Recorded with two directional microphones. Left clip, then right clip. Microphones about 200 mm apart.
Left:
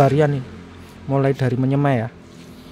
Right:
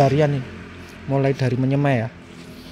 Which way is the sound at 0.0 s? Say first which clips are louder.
Left 1 dB; 10° left (ahead or behind).